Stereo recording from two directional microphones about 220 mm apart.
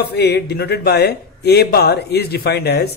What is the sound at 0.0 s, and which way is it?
A man's voice, 50° left (ahead or behind).